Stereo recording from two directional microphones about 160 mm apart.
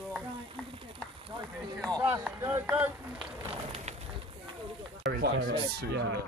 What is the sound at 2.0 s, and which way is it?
Speech, 15° right (ahead or behind).